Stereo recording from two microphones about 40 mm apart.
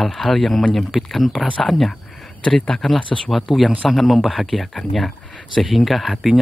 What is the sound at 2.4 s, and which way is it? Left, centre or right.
Speech, left.